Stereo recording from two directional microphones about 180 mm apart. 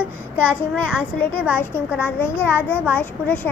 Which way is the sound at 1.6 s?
10° left (ahead or behind).